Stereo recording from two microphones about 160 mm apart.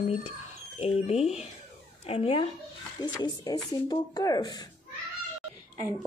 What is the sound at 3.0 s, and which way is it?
Speech, 25° left (ahead or behind).